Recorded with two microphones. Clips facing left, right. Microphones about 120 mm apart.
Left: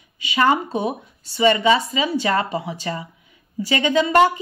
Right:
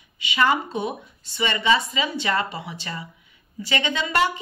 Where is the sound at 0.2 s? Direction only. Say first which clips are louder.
Left 3 dB; 40° left (ahead or behind).